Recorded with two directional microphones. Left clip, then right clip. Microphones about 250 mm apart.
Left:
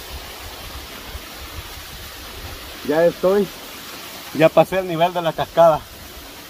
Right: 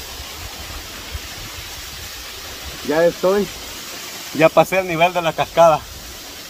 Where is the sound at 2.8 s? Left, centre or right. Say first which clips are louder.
Even; centre.